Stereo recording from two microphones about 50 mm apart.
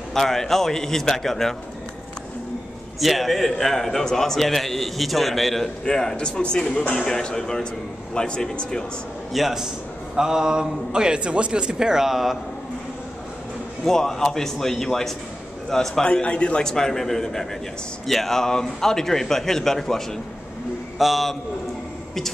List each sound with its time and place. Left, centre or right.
0.1 s a man's voice: centre
3.0 s a man's voice: centre
5.9 s speech: centre
7.0 s a man's voice: centre
9.3 s a man's voice: centre
13.8 s a man's voice: centre
16.6 s a man's voice: centre
21.0 s a man's voice: centre